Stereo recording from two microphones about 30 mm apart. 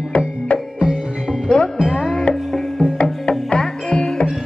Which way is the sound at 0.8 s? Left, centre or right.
Right.